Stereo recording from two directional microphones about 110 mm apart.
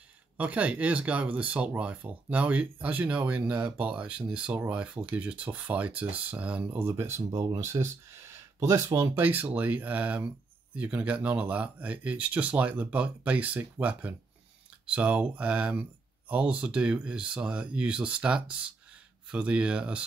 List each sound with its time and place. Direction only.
0.4 s speech: 15° right (ahead or behind)